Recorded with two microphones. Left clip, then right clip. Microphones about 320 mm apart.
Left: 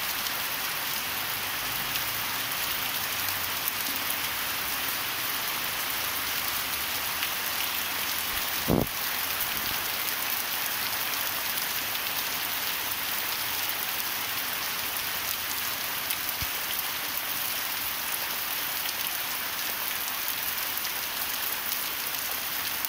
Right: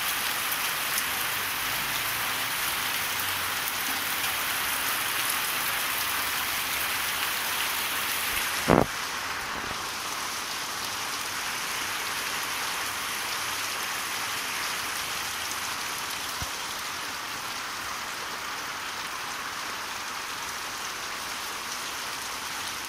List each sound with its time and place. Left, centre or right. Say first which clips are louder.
8.7 s vehicle: right 7 dB; right